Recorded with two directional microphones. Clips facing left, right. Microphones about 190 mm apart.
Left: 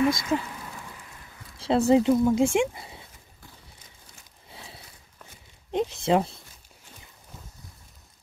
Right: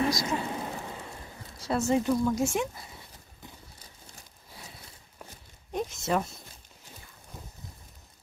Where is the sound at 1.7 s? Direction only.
30° left (ahead or behind).